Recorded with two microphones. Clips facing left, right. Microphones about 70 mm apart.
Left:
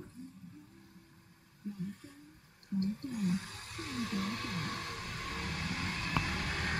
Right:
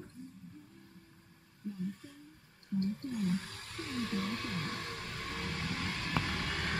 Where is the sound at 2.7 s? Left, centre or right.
Right.